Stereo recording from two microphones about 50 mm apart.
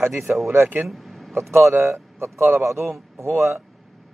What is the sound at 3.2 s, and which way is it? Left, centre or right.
Speech, right.